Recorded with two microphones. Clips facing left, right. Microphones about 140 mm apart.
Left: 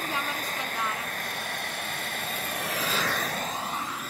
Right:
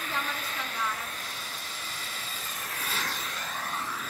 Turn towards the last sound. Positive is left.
turn(degrees=15)  # may be behind; listen again after turning